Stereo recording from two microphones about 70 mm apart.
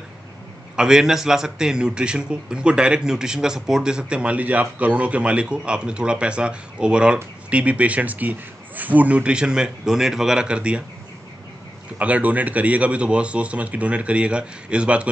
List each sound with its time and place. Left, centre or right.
0.7 s a man's voice: centre
12.0 s speech: right